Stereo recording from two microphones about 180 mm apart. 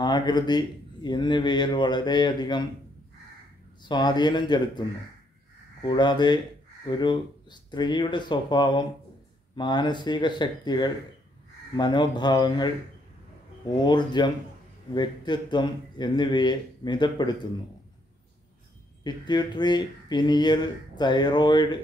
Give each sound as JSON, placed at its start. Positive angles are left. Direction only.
{"t": 0.0, "sound": "speech", "side_deg": 25}
{"t": 3.8, "sound": "speech", "side_deg": 25}
{"t": 13.8, "sound": "speech", "side_deg": 25}
{"t": 19.0, "sound": "speech", "side_deg": 25}